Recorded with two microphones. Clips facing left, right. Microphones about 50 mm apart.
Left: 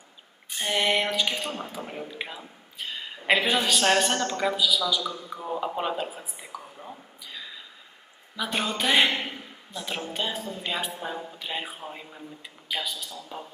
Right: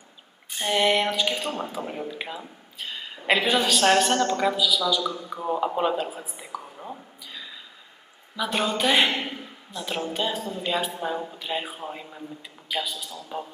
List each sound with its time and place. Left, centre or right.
0.6 s a man's voice: centre
1.3 s speech: right
1.9 s a man's voice: centre
5.0 s a woman's voice: centre
5.6 s a man's voice: centre
6.5 s whispering: centre
8.4 s a man's voice: centre